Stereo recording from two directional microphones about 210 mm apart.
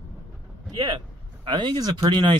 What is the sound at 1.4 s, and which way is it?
Speech, 20° right (ahead or behind).